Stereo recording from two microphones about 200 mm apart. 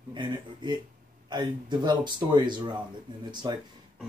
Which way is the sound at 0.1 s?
25° right (ahead or behind).